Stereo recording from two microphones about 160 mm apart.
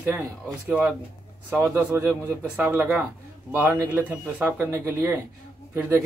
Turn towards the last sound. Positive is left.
turn(degrees=-15)  # may be behind; listen again after turning